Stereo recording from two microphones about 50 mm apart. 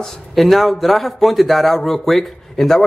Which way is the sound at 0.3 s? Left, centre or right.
Centre.